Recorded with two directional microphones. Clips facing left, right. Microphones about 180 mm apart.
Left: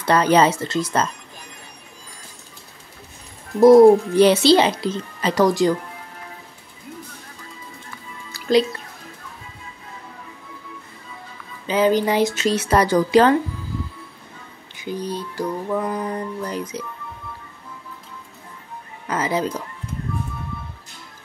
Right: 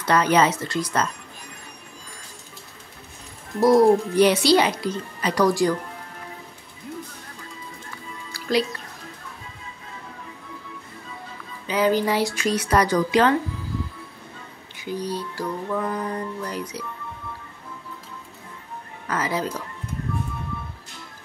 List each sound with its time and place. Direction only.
0.0 s speech: 30° left (ahead or behind)
3.6 s speech: 25° left (ahead or behind)
8.3 s music: 20° left (ahead or behind)
11.6 s speech: 25° left (ahead or behind)
14.8 s speech: 20° left (ahead or behind)
19.0 s speech: 20° left (ahead or behind)